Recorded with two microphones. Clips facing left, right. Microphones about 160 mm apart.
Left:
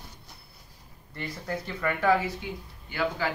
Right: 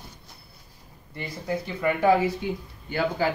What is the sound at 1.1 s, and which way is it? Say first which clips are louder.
Speech: right 4 dB; 10° right (ahead or behind).